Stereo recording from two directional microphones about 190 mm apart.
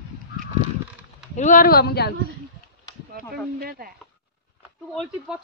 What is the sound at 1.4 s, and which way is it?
Speech, 45° left (ahead or behind).